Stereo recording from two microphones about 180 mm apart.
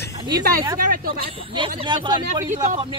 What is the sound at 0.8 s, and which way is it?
Speech, 55° right (ahead or behind).